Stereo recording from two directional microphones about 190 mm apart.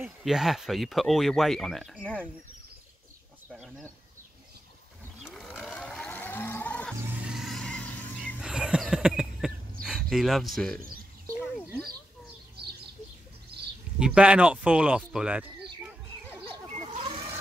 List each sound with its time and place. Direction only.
0.0 s speech: centre (ahead or behind)
3.5 s speech: 5° right (ahead or behind)
5.2 s livestock: centre (ahead or behind)
7.1 s vehicle: 5° right (ahead or behind)
8.4 s a sound: 5° right (ahead or behind)
9.8 s speech: centre (ahead or behind)
13.9 s speech: 5° right (ahead or behind)
16.7 s pig: 35° right (ahead or behind)